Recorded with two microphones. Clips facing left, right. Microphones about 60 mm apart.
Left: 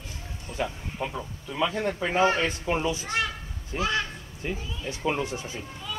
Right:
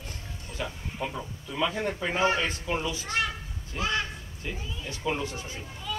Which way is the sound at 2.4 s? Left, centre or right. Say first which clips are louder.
Left 3 dB; left.